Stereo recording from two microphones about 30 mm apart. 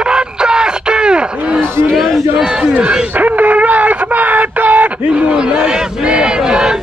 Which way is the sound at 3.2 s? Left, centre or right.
Right.